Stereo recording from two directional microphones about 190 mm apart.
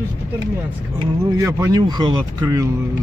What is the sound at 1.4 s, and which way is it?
Speech, 15° right (ahead or behind).